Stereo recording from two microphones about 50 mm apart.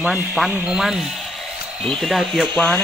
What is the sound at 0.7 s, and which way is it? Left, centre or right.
Speech, centre.